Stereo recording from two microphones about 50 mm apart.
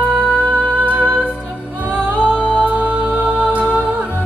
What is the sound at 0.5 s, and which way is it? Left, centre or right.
Music, right.